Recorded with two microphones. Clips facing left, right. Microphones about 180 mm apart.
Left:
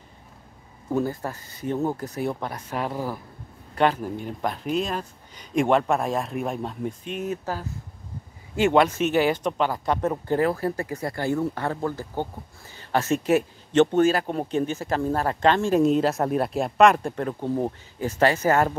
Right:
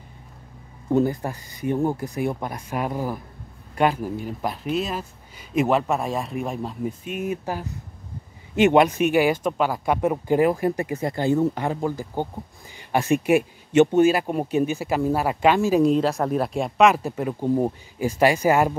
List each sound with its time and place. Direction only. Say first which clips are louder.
0.9 s speech: right 5 dB; 15° right (ahead or behind)